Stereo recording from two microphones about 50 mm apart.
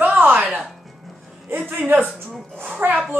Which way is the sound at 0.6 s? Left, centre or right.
Centre.